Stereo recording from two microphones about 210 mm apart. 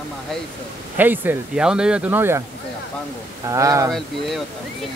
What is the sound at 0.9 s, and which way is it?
Speech, 10° right (ahead or behind).